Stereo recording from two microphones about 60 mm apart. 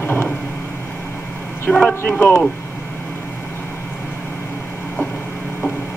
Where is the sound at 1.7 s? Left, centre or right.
Centre.